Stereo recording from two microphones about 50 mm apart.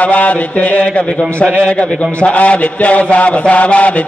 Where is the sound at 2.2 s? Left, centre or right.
Left.